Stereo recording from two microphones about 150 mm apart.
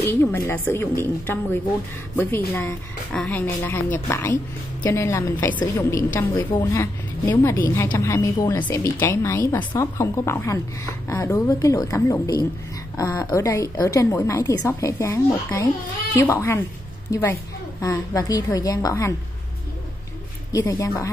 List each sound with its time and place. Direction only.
0.0 s a woman's voice: 15° left (ahead or behind)
20.5 s a woman's voice: 25° left (ahead or behind)